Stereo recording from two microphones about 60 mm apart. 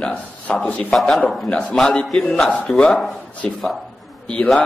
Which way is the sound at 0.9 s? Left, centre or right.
Centre.